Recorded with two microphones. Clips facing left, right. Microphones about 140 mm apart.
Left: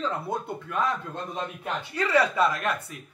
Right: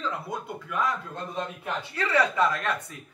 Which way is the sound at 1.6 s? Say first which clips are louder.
Left 2 dB; 15° left (ahead or behind).